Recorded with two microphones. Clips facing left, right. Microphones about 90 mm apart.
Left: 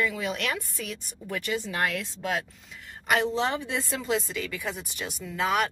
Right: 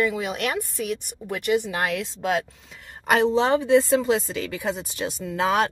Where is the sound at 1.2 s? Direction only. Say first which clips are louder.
Right 1 dB; 35° right (ahead or behind).